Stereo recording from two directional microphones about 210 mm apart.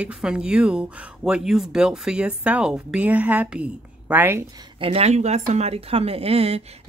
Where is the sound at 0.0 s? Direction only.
5° right (ahead or behind).